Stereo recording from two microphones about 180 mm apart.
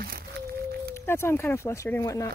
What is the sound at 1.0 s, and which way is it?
Speech, 15° left (ahead or behind).